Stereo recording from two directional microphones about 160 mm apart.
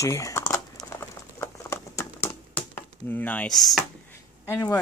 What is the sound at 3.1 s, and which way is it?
Speech, 10° left (ahead or behind).